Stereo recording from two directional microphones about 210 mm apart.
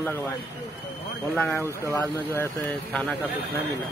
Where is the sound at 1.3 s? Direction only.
5° left (ahead or behind).